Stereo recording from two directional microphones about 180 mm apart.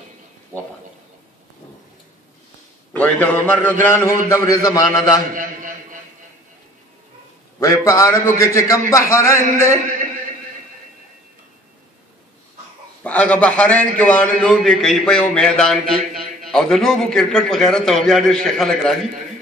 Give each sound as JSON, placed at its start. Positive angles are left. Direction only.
{"t": 2.9, "sound": "a man's voice", "side_deg": 10}
{"t": 5.3, "sound": "a sound", "side_deg": -50}
{"t": 7.6, "sound": "a man's voice", "side_deg": 20}
{"t": 13.0, "sound": "a man's voice", "side_deg": 5}